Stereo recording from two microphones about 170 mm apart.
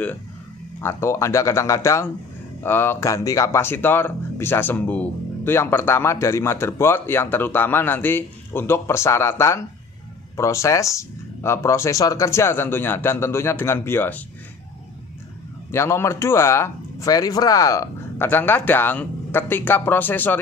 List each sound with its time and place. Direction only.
0.7 s speech: 15° left (ahead or behind)
15.7 s speech: 15° left (ahead or behind)